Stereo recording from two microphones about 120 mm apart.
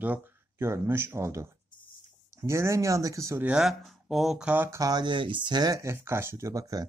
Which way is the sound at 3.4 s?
5° right (ahead or behind).